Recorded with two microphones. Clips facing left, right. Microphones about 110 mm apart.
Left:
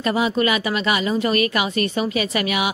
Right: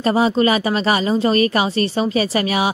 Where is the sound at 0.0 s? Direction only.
35° right (ahead or behind).